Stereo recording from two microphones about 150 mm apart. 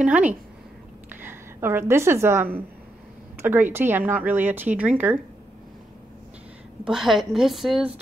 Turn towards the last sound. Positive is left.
turn(degrees=0)  # may be behind; listen again after turning